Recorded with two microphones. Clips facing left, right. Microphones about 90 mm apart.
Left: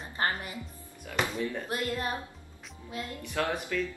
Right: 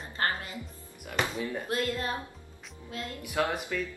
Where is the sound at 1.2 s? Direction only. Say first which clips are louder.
Left 1 dB; 10° right (ahead or behind).